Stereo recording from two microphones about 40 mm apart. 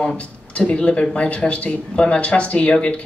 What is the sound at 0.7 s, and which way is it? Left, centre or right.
Speech, left.